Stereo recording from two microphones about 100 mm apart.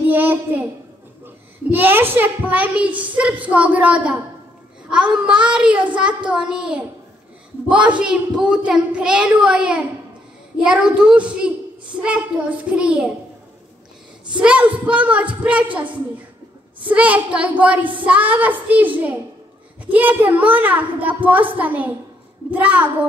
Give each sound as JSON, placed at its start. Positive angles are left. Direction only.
{"t": 0.0, "sound": "a sound", "side_deg": -20}
{"t": 1.2, "sound": "a child's voice", "side_deg": -20}
{"t": 5.2, "sound": "a child's voice", "side_deg": -10}
{"t": 14.3, "sound": "a child's voice", "side_deg": -10}